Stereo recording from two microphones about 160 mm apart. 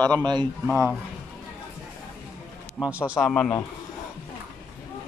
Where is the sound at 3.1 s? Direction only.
Centre (ahead or behind).